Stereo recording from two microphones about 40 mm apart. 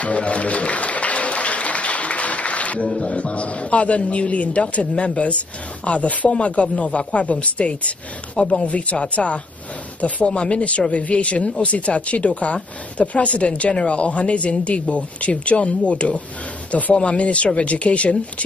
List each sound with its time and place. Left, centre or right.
0.0 s applause: left
3.0 s speech: left